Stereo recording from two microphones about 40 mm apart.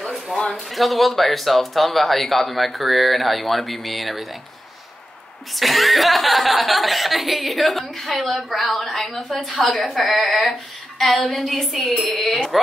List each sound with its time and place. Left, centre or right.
0.0 s a sound: centre
0.7 s speech: centre
5.6 s speech: centre
11.9 s speech: left
12.2 s speech: centre